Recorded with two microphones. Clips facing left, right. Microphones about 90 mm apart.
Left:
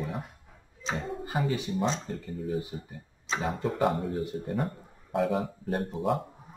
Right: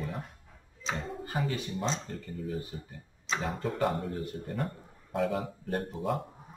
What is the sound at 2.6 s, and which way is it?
Speech, 15° left (ahead or behind).